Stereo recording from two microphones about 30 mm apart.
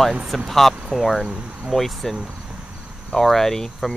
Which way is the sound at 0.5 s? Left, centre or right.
Centre.